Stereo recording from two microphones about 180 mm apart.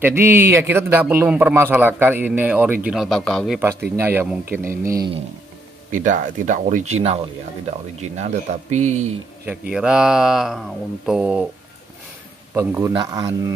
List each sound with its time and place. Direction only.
0.0 s a man's voice: 10° right (ahead or behind); by 3.5 s 5° left (ahead or behind)
4.0 s a man's voice: 10° right (ahead or behind)
5.9 s speech: 45° right (ahead or behind)
9.5 s speech: 5° right (ahead or behind)
12.5 s a man's voice: 15° right (ahead or behind)